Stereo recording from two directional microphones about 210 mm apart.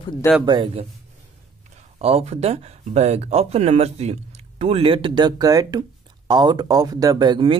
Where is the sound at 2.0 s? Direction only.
30° right (ahead or behind).